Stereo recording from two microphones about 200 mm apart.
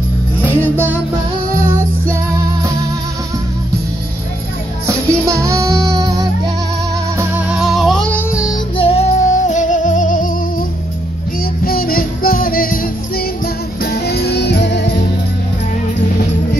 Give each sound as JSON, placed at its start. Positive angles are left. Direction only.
{"t": 0.6, "sound": "music", "side_deg": -10}
{"t": 4.8, "sound": "music", "side_deg": -15}
{"t": 7.2, "sound": "music", "side_deg": -5}
{"t": 8.7, "sound": "music", "side_deg": 30}
{"t": 11.6, "sound": "music", "side_deg": 45}